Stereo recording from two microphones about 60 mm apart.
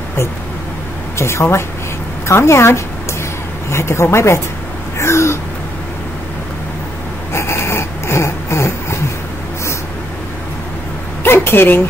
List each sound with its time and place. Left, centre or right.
1.1 s speech: left
4.9 s gasp: left
7.3 s dog: left
11.2 s a sound: left